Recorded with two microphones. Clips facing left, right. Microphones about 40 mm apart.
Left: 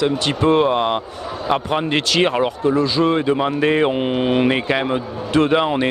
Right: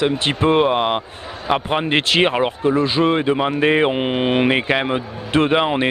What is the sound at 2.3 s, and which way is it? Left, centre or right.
Speech, centre.